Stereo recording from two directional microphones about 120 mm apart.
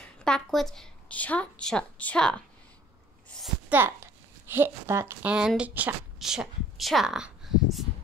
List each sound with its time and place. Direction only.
0.0 s a woman's voice: 5° left (ahead or behind)
3.6 s a child's voice: 20° right (ahead or behind)